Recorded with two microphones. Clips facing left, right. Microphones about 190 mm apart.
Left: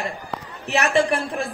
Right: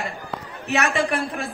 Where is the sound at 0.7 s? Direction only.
30° left (ahead or behind).